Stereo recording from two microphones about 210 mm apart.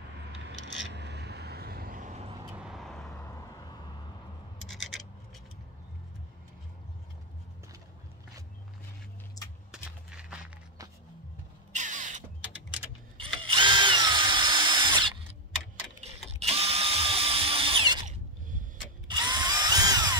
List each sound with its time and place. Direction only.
0.9 s vehicle: 55° right (ahead or behind); by 2.4 s 30° right (ahead or behind)
2.5 s vehicle: 5° right (ahead or behind)
3.3 s vehicle: 15° left (ahead or behind)
4.6 s scratch: centre (ahead or behind)
9.4 s a sound: 15° left (ahead or behind)
10.1 s walk: 5° right (ahead or behind)
11.7 s a sound: 35° right (ahead or behind)
13.2 s drill: 25° right (ahead or behind)
16.3 s drill: 30° right (ahead or behind)